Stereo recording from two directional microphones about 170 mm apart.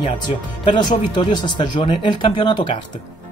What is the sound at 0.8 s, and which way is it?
Speech, 30° left (ahead or behind).